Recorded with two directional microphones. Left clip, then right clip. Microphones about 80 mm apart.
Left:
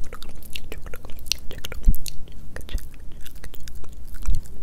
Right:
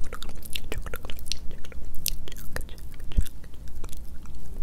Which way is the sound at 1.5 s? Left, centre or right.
Left.